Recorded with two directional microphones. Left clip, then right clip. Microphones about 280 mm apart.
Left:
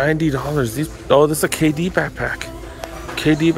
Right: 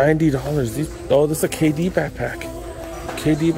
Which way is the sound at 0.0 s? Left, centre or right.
Centre.